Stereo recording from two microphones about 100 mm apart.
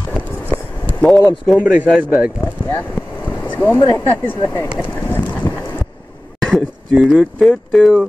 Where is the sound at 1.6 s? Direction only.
15° right (ahead or behind).